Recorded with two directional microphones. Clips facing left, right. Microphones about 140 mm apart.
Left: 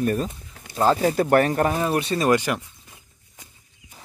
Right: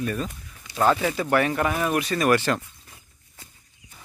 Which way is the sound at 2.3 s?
15° left (ahead or behind).